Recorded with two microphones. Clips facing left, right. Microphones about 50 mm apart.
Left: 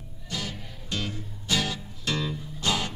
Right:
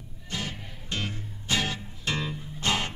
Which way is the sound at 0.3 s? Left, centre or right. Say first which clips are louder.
Even; right.